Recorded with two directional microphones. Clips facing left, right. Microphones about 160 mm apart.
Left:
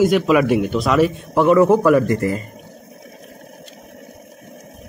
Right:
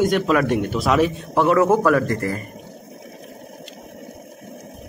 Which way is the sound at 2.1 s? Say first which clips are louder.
Left 4 dB; 20° left (ahead or behind).